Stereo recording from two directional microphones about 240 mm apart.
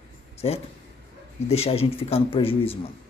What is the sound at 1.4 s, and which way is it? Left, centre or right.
Speech, left.